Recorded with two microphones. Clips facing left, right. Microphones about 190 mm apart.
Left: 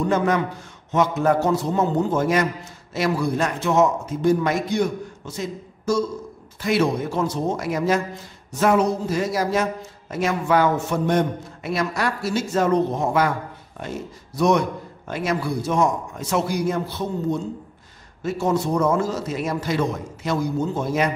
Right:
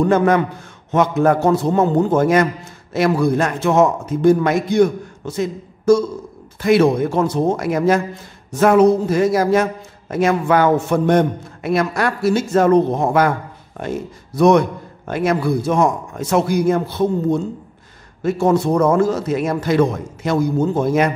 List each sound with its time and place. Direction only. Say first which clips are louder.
0.0 s a man's voice: right 6 dB; 55° right (ahead or behind)